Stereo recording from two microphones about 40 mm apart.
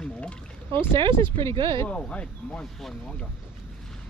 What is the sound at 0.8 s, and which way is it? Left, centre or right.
Speech, left.